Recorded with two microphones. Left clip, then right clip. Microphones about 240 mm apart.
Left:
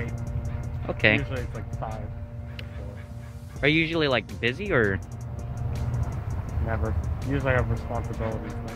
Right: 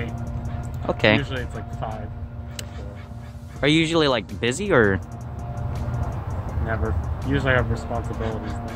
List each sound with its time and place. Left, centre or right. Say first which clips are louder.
0.0 s music: right 4 dB; centre
0.8 s speech: right 3 dB; right
1.3 s speech: right 4 dB; centre
3.6 s speech: right 4 dB; right
5.5 s music: right 4 dB; centre